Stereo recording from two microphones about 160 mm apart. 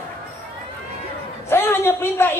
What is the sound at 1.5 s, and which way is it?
Speech, 15° left (ahead or behind).